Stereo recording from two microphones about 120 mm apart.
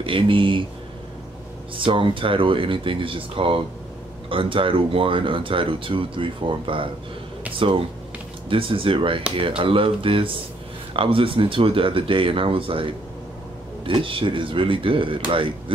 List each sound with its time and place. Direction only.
0.0 s speech: 45° right (ahead or behind)
1.9 s speech: 45° right (ahead or behind)